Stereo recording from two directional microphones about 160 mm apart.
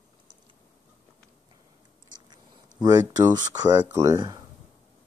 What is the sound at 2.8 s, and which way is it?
Speech, 25° right (ahead or behind).